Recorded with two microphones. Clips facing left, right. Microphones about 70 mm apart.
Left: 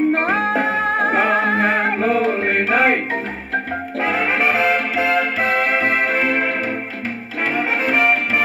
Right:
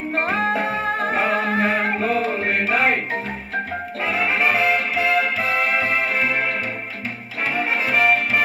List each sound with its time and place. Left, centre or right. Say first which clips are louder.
0.1 s music: left 3 dB; left
4.0 s music: left 2 dB; left
7.5 s music: left 2 dB; left